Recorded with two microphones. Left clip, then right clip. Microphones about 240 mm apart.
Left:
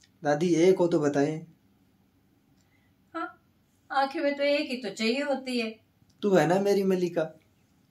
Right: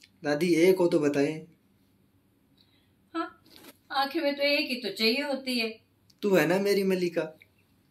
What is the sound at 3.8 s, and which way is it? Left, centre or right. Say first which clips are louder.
A woman's voice: left 1 dB; centre.